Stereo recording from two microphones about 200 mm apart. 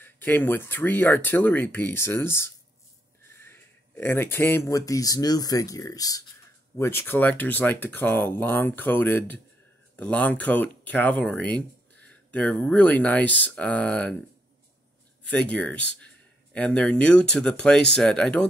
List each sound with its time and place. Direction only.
0.0 s speech: 10° left (ahead or behind)
15.2 s speech: 5° left (ahead or behind)